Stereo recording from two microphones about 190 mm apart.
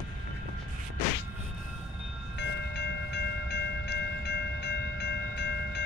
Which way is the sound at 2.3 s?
65° left (ahead or behind).